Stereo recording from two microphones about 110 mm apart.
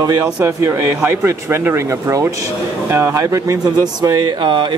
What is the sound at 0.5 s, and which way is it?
Speech, 25° right (ahead or behind).